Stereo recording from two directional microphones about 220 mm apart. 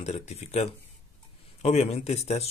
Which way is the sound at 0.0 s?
30° left (ahead or behind).